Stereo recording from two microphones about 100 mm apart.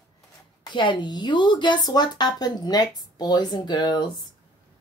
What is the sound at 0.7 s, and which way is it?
Speech, 50° left (ahead or behind).